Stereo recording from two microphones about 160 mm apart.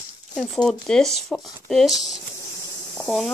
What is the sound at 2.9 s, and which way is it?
Insect, centre (ahead or behind).